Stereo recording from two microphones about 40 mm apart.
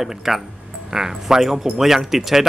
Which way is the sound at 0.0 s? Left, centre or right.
Centre.